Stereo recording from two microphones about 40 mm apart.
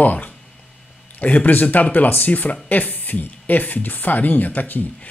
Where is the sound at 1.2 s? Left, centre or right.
Left.